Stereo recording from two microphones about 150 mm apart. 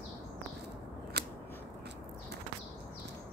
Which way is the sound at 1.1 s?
90° right.